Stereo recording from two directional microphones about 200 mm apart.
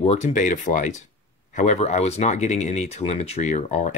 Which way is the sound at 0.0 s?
35° left (ahead or behind).